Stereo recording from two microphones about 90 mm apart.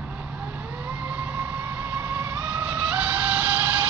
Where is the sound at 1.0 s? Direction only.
15° right (ahead or behind).